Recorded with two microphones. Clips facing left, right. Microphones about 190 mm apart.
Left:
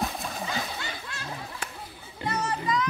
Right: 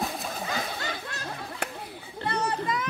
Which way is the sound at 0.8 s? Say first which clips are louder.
Right 3 dB; 40° right (ahead or behind).